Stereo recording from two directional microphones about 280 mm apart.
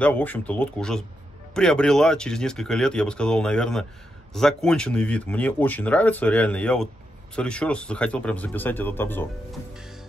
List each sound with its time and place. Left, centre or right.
0.0 s speech: centre